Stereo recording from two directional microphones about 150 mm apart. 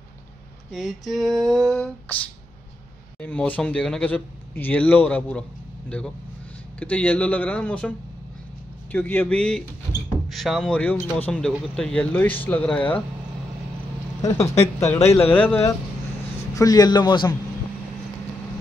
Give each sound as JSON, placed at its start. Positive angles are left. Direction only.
{"t": 0.7, "sound": "a sound", "side_deg": 0}
{"t": 3.2, "sound": "speech", "side_deg": 10}
{"t": 8.9, "sound": "speech", "side_deg": 15}
{"t": 14.2, "sound": "a man's voice", "side_deg": 20}
{"t": 14.9, "sound": "speech", "side_deg": 45}
{"t": 15.3, "sound": "speech", "side_deg": 15}
{"t": 16.5, "sound": "a man's voice", "side_deg": 25}